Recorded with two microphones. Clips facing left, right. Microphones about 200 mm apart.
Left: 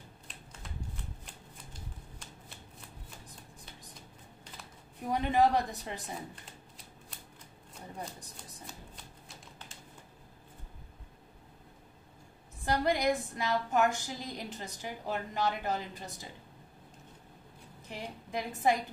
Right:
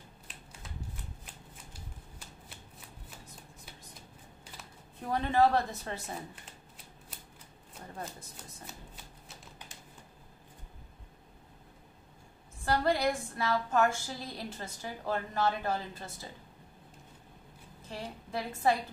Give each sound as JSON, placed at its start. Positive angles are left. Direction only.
{"t": 0.3, "sound": "a sound", "side_deg": -5}
{"t": 1.2, "sound": "shuffling cards", "side_deg": -5}
{"t": 5.0, "sound": "a woman's voice", "side_deg": 15}
{"t": 12.6, "sound": "a woman's voice", "side_deg": 15}
{"t": 17.8, "sound": "a sound", "side_deg": 15}
{"t": 18.6, "sound": "a woman's voice", "side_deg": 20}